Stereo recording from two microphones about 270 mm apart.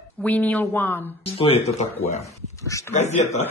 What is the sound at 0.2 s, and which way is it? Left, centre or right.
Speech, centre.